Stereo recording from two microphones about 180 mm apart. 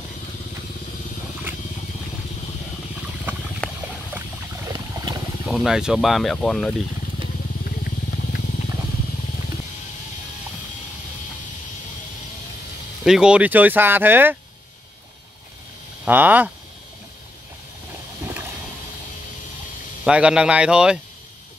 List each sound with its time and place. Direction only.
3.6 s boat: 5° left (ahead or behind)
4.6 s boat: 20° right (ahead or behind)
5.5 s speech: centre (ahead or behind)
13.0 s speech: 5° right (ahead or behind)
16.1 s speech: 10° right (ahead or behind)
20.1 s speech: 5° right (ahead or behind)